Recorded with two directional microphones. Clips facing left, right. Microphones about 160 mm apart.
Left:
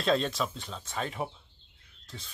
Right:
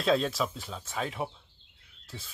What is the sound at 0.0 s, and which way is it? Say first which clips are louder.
Speech: right 1 dB; centre (ahead or behind).